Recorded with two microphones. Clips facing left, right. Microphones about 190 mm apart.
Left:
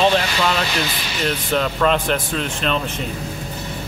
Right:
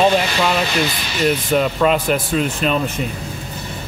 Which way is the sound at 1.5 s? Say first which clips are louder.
Even; 10° right (ahead or behind).